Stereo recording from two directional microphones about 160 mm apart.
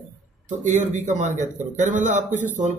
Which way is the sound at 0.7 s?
45° right (ahead or behind).